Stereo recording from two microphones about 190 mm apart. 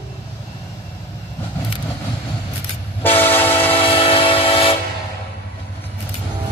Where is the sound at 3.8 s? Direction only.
30° left (ahead or behind).